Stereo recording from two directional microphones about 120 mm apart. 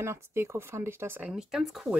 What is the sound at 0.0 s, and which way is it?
Speech, 20° right (ahead or behind).